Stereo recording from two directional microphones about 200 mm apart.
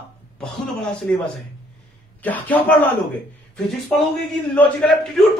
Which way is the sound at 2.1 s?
10° left (ahead or behind).